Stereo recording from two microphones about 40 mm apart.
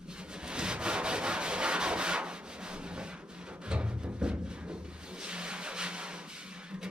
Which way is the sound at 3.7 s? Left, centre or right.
Right.